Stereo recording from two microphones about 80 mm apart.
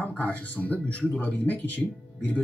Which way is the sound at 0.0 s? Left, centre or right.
Centre.